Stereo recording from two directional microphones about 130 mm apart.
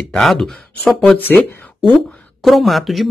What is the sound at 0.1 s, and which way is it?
Speech, 5° left (ahead or behind).